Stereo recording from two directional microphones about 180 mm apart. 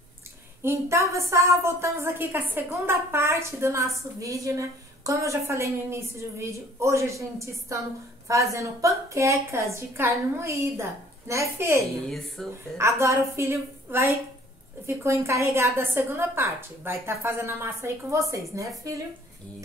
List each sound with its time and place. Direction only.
0.6 s a woman's voice: 15° right (ahead or behind)
12.4 s a woman's voice: 5° left (ahead or behind)
12.7 s a woman's voice: 15° right (ahead or behind)